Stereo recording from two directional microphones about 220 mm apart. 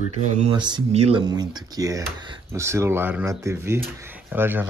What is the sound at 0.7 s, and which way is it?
Speech, 25° right (ahead or behind).